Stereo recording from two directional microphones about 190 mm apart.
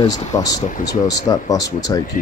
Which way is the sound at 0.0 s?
20° left (ahead or behind).